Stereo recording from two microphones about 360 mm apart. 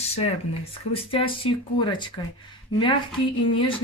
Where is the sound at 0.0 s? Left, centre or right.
Centre.